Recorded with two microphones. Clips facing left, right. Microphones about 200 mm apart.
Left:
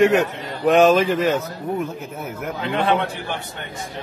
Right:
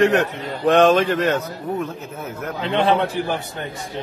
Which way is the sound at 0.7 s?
5° left (ahead or behind).